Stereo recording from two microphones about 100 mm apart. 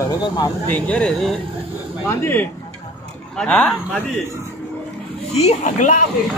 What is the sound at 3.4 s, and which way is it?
Speech, 10° left (ahead or behind).